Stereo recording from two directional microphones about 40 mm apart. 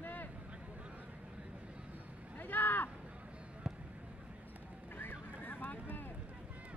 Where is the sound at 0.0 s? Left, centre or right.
Left.